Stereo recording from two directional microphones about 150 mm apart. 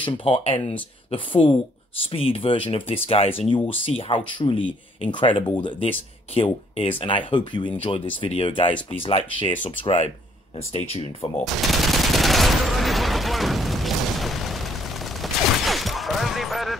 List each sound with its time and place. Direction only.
0.0 s speech: 40° left (ahead or behind)
11.4 s gunshot: centre (ahead or behind)